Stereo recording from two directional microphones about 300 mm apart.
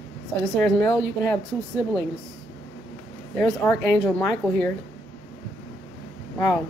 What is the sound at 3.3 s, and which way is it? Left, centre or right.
A woman's voice, centre.